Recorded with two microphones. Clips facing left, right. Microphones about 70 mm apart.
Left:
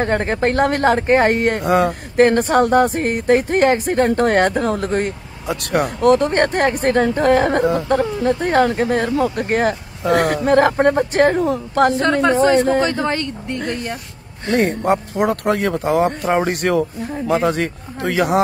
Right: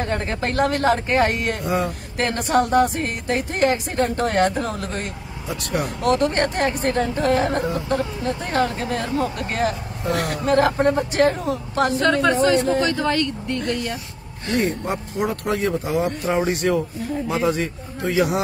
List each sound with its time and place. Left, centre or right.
0.0 s speech: left
1.6 s speech: left
2.1 s speech: left
6.1 s speech: left
8.0 s speech: left
14.9 s speech: left